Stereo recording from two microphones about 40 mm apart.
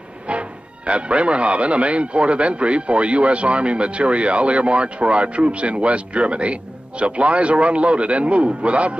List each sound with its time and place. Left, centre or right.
0.3 s speech: right